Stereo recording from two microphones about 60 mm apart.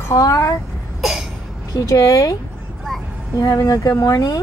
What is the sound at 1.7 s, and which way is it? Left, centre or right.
Speech, left.